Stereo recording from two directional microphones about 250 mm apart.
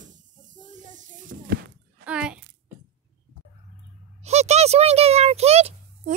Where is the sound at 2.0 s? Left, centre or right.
Centre.